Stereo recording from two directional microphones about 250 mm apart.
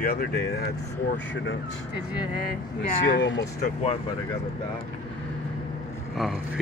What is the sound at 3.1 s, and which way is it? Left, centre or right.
Speech, left.